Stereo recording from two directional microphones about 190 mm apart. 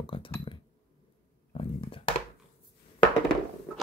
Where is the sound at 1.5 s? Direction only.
30° left (ahead or behind).